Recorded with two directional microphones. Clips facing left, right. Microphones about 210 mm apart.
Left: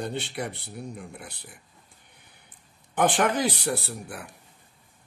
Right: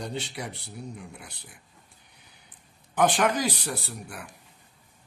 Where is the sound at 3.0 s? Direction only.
55° left (ahead or behind).